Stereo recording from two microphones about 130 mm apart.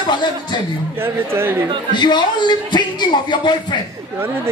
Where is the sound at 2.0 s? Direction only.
35° left (ahead or behind).